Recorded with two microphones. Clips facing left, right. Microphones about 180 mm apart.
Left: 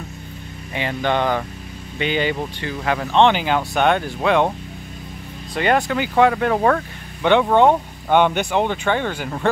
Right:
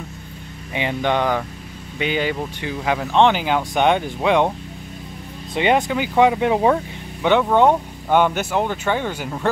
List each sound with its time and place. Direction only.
0.7 s speech: 15° right (ahead or behind)
5.5 s speech: 20° right (ahead or behind)